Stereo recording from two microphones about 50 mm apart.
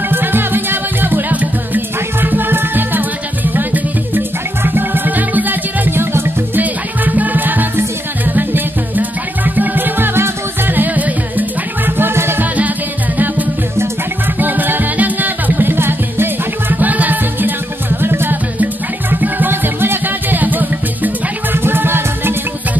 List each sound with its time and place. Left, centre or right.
0.1 s music: right
5.9 s music: right
6.6 s music: right
14.4 s music: right
18.6 s music: right